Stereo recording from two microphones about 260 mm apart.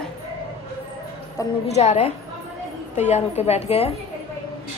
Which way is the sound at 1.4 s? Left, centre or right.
Centre.